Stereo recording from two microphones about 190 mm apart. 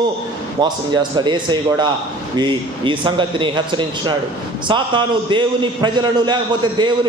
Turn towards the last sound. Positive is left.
turn(degrees=-25)  # may be behind; listen again after turning